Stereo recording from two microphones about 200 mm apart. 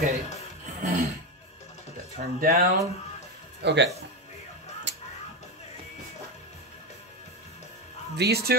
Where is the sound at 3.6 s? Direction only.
60° right (ahead or behind).